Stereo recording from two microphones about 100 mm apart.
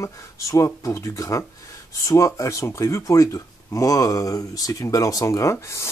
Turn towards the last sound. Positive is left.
turn(degrees=30)  # may be behind; listen again after turning